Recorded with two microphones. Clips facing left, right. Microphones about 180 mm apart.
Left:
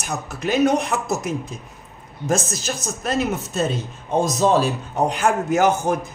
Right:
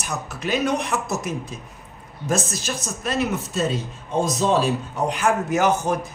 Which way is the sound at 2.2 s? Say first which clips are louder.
Left 2 dB; 45° left (ahead or behind).